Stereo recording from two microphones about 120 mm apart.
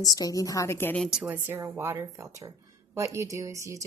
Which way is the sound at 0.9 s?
5° left (ahead or behind).